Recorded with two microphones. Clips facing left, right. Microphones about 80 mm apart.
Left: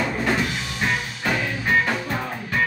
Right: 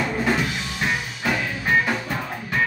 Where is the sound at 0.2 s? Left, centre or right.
Centre.